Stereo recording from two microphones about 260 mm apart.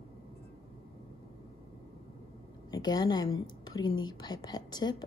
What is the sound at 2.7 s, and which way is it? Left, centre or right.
A woman's voice, centre.